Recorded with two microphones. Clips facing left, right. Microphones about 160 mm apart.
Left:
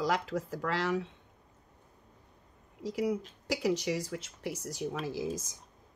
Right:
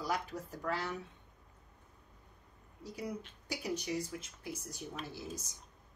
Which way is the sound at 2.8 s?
90° left.